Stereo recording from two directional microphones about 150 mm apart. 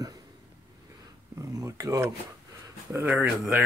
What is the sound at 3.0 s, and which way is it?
Speech, 10° right (ahead or behind).